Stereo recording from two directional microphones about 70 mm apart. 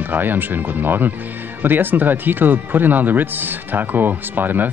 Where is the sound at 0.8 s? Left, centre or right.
Right.